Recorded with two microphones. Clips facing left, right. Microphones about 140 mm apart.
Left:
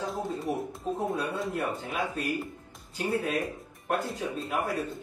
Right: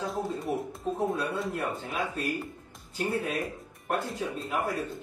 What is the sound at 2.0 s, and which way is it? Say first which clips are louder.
Speech: left 1 dB; 15° left (ahead or behind).